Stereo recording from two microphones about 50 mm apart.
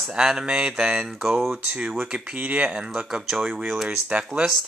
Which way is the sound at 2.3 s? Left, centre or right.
Right.